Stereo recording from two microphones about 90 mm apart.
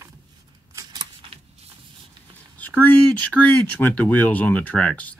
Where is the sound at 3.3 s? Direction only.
15° left (ahead or behind).